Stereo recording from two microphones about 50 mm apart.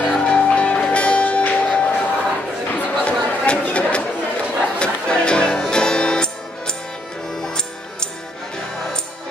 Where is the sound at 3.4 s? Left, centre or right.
Left.